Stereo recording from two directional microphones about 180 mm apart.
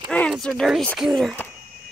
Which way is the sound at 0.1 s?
5° left (ahead or behind).